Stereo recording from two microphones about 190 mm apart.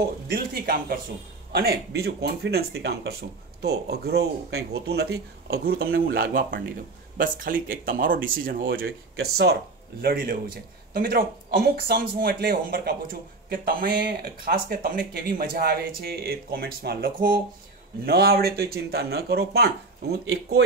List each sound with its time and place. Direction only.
0.0 s speech: 55° right (ahead or behind)